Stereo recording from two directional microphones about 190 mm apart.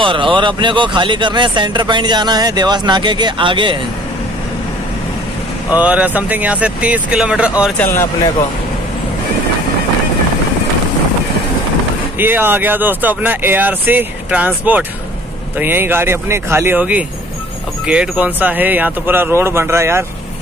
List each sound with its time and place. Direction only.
0.0 s speech: 25° right (ahead or behind)
5.7 s speech: 5° right (ahead or behind)
7.8 s speech: 15° left (ahead or behind)
12.2 s speech: 10° right (ahead or behind)